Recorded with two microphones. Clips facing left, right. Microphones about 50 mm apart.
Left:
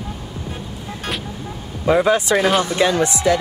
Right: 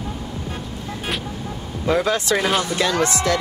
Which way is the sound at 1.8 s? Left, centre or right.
Centre.